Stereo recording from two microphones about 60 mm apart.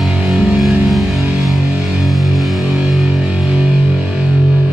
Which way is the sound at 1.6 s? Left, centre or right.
Centre.